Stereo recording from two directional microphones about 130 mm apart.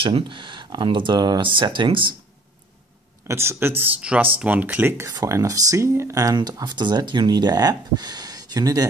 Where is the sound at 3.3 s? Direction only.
20° right (ahead or behind).